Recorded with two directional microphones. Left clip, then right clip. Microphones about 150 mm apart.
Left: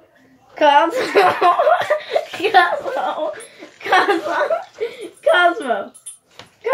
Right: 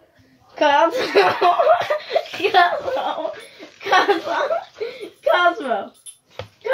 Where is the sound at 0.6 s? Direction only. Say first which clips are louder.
Left 3 dB; 35° right (ahead or behind).